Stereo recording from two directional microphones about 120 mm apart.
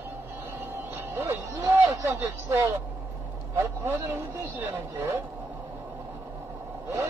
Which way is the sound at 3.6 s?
20° right (ahead or behind).